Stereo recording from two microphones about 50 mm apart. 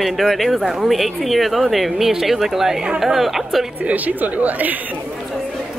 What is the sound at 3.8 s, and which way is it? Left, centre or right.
Speech, right.